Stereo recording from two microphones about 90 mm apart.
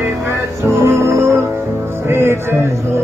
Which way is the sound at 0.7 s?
30° right (ahead or behind).